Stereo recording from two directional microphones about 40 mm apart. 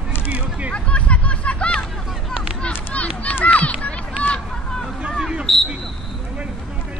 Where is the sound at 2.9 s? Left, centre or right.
Left.